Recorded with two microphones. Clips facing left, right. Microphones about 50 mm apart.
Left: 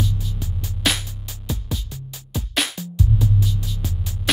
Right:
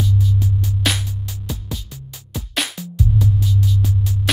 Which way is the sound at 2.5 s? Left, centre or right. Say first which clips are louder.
Even; centre.